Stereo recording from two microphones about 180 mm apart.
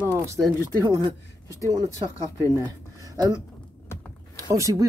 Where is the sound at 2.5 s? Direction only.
20° right (ahead or behind).